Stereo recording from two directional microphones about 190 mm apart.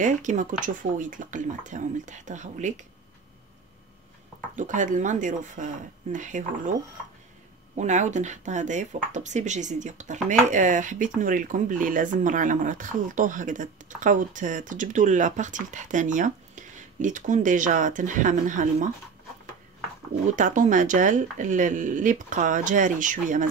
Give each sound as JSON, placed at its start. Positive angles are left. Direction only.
{"t": 0.0, "sound": "speech", "side_deg": -40}
{"t": 4.6, "sound": "speech", "side_deg": -40}
{"t": 7.7, "sound": "speech", "side_deg": -40}
{"t": 20.2, "sound": "speech", "side_deg": -40}